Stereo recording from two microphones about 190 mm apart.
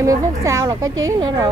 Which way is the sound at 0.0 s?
15° right (ahead or behind).